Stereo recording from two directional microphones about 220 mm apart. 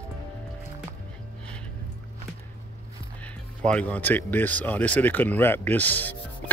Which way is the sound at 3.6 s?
5° left (ahead or behind).